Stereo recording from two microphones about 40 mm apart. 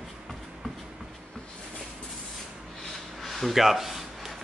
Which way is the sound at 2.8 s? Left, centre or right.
Centre.